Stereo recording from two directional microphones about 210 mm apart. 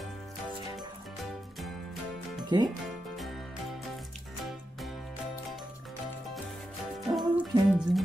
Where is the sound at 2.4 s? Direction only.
20° right (ahead or behind).